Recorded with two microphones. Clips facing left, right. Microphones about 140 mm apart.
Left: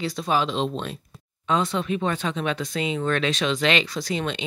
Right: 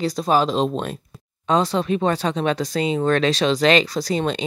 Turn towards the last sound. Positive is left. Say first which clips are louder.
# right 5 dB
turn(degrees=-35)  # may be behind; listen again after turning